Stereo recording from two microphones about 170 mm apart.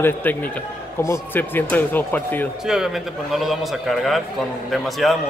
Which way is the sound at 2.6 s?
Centre (ahead or behind).